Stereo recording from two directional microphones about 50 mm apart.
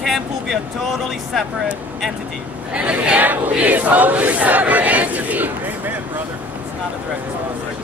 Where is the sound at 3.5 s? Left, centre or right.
Right.